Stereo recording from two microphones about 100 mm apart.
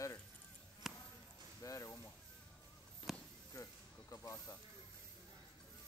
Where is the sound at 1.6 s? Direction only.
35° left (ahead or behind).